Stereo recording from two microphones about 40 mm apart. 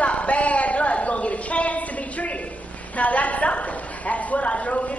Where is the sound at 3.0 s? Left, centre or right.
Left.